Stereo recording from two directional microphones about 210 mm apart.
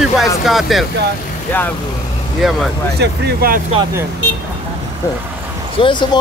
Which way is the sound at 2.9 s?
50° right (ahead or behind).